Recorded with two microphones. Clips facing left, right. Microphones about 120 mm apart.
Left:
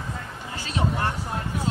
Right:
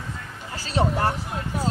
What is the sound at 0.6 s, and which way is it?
Vehicle, 35° right (ahead or behind).